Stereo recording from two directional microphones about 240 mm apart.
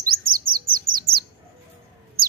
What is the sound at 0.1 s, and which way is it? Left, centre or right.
Bird, right.